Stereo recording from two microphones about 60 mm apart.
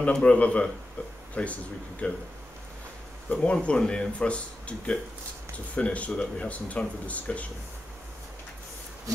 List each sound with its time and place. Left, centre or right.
0.0 s speech: centre
3.3 s speech: left